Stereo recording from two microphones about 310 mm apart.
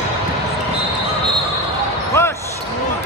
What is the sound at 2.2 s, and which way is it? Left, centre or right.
Basketball bounce, centre.